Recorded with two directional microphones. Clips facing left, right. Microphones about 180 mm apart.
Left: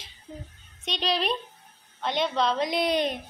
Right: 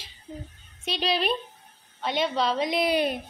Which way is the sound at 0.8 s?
5° right (ahead or behind).